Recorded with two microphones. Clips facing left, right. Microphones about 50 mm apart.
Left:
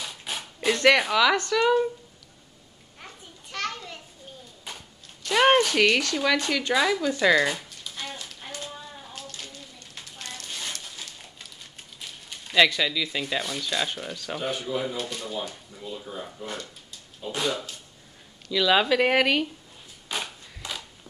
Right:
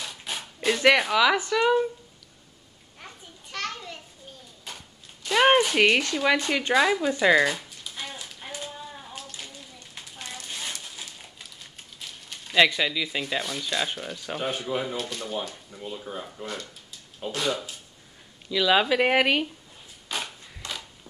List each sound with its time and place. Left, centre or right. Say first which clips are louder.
0.0 s speech: even; centre
3.5 s children playing: left 1 dB; centre
5.3 s speech: even; centre
7.5 s a sound: even; centre
12.5 s speech: even; centre
14.1 s speech: right 1 dB; centre
14.5 s speech: left 1 dB; right
15.0 s speech: even; centre
16.1 s speech: right 1 dB; right
18.5 s speech: even; centre
20.1 s a sound: even; centre